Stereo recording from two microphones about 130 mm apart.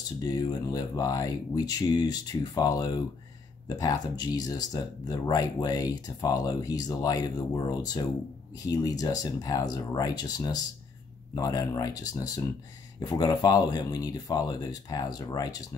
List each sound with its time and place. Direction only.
0.2 s speech: 30° left (ahead or behind)